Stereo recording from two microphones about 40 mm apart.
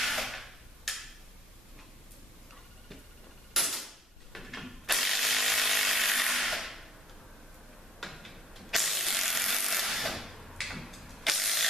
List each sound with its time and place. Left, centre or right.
0.0 s a sound: centre
3.5 s ratchet: centre
8.0 s ratchet: centre